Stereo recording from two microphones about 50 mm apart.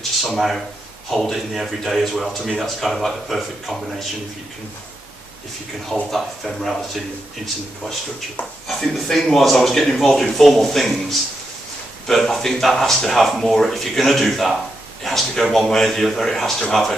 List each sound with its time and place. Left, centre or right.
0.2 s speech: centre
6.0 s speech: centre
8.6 s speech: centre